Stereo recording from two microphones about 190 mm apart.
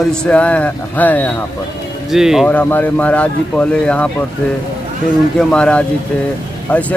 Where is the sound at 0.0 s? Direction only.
5° left (ahead or behind).